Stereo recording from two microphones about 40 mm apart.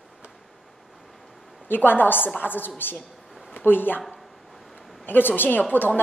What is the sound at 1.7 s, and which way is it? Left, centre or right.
A woman's voice, left.